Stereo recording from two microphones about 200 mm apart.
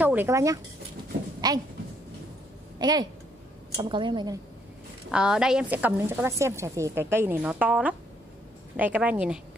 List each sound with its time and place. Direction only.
0.0 s a woman's voice: 10° right (ahead or behind)
2.8 s a woman's voice: 20° right (ahead or behind)
5.1 s a woman's voice: 5° right (ahead or behind)